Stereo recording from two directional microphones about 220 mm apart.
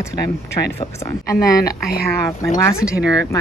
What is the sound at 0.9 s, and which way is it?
Speech, 15° left (ahead or behind).